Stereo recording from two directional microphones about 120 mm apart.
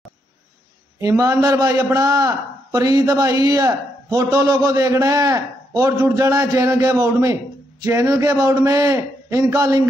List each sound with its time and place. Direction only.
0.9 s a man's voice: 30° right (ahead or behind)